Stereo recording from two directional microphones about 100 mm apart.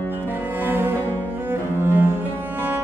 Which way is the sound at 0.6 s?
20° right (ahead or behind).